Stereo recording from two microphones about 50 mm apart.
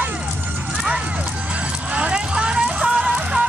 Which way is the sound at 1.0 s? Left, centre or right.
Right.